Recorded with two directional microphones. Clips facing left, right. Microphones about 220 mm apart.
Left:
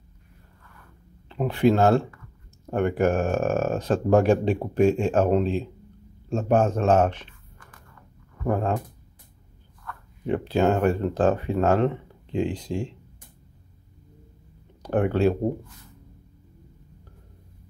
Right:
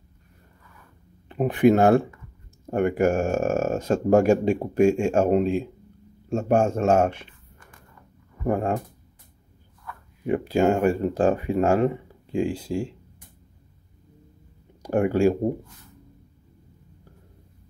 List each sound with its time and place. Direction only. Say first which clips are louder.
1.3 s speech: right 3 dB; 15° right (ahead or behind)
8.5 s speech: right 1 dB; 10° right (ahead or behind)
9.8 s a sound: right 1 dB; 10° right (ahead or behind)
10.7 s speech: right 1 dB; 10° right (ahead or behind)
14.8 s speech: right 2 dB; 10° right (ahead or behind)